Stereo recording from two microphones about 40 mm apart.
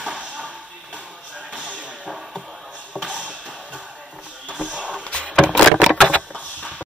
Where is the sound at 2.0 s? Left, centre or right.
Centre.